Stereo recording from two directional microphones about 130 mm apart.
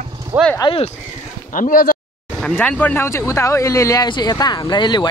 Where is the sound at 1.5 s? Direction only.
90° left.